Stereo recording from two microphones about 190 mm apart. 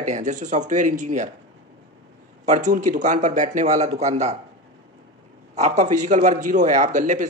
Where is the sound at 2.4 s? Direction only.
40° right (ahead or behind).